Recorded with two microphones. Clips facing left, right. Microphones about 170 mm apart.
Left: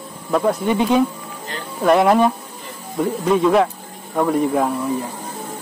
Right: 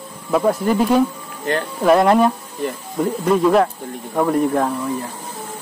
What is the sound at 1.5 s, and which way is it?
Speech, 70° right (ahead or behind).